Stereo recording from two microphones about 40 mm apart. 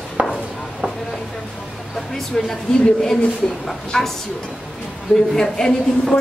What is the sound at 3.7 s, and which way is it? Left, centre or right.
Speech, centre.